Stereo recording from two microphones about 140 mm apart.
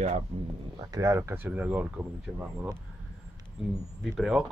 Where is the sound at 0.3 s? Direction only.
45° right (ahead or behind).